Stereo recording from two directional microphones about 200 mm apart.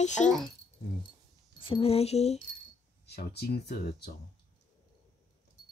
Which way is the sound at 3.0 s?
55° left (ahead or behind).